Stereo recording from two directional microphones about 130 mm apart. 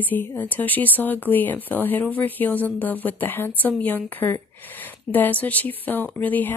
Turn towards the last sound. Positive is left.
turn(degrees=15)  # may be behind; listen again after turning